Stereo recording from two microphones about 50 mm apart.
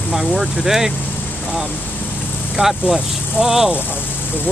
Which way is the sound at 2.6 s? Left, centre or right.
Centre.